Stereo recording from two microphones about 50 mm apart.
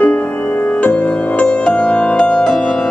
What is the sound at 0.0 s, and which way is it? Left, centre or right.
Music, left.